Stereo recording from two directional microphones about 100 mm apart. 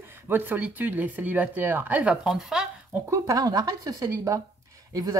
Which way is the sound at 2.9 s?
30° right (ahead or behind).